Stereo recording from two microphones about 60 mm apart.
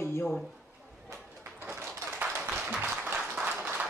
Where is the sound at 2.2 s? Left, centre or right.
Right.